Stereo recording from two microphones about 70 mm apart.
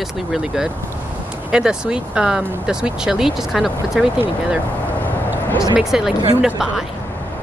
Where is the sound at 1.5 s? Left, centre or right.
Centre.